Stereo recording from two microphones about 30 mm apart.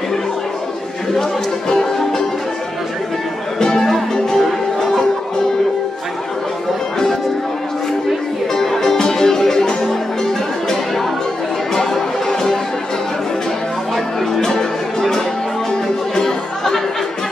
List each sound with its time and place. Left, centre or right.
3.5 s music: centre
8.5 s music: centre
11.7 s music: centre
14.4 s music: centre